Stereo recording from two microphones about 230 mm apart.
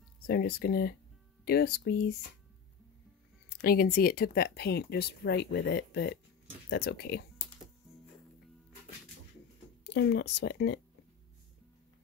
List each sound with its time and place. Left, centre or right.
0.3 s speech: left
3.4 s speech: left
9.8 s speech: left